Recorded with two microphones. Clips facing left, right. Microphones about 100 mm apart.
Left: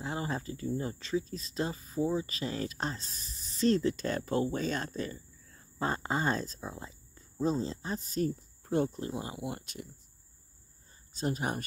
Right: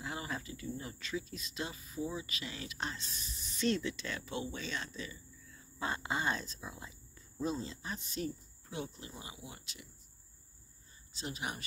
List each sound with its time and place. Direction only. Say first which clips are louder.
0.0 s speech: left 6 dB; 35° left (ahead or behind); by 9.8 s 50° left (ahead or behind)
11.1 s speech: left 8 dB; 45° left (ahead or behind)